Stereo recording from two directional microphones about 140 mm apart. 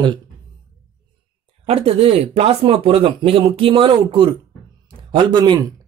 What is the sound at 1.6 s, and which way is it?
A man's voice, 45° right (ahead or behind).